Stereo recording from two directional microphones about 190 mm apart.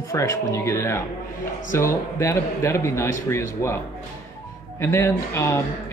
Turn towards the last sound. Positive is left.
turn(degrees=15)  # may be behind; listen again after turning